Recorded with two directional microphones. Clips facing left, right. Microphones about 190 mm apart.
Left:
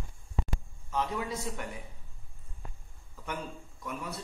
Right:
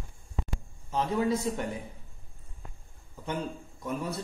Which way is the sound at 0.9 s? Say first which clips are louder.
Right 6 dB; 30° right (ahead or behind).